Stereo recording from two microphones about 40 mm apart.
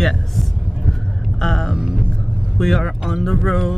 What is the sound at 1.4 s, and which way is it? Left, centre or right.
Music, centre.